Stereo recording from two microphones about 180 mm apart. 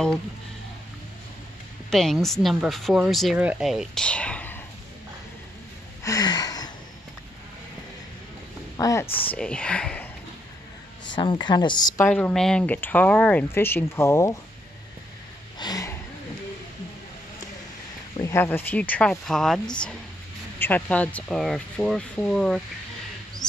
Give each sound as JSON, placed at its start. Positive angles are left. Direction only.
{"t": 1.9, "sound": "speech", "side_deg": 0}
{"t": 6.0, "sound": "a sound", "side_deg": 20}
{"t": 8.7, "sound": "speech", "side_deg": 15}
{"t": 11.1, "sound": "speech", "side_deg": 25}
{"t": 12.1, "sound": "speech", "side_deg": 5}
{"t": 15.6, "sound": "a sound", "side_deg": 20}
{"t": 18.1, "sound": "speech", "side_deg": 15}